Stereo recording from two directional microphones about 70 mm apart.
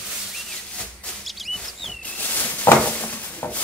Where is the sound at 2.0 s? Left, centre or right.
Left.